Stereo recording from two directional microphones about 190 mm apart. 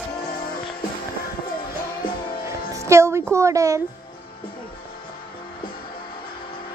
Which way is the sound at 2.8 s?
15° right (ahead or behind).